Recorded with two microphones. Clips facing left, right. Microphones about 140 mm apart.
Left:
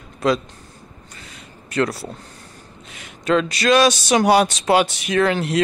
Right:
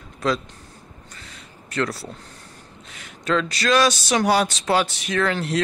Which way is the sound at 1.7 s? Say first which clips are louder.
Left 4 dB; 15° left (ahead or behind).